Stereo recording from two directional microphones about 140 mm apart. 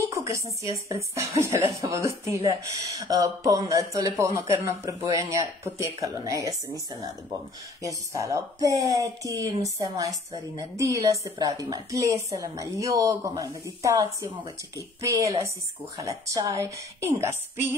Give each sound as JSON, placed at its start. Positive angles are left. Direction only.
{"t": 0.1, "sound": "speech", "side_deg": -20}
{"t": 8.1, "sound": "a woman's voice", "side_deg": -25}